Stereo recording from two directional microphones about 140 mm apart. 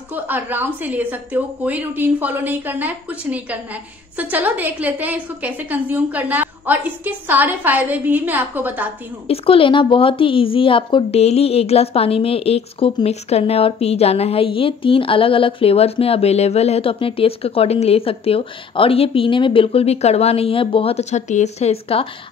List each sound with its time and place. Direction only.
0.1 s a woman's voice: 15° right (ahead or behind)
9.3 s a woman's voice: 40° left (ahead or behind)